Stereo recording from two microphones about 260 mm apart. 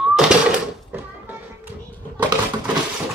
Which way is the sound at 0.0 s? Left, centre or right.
Centre.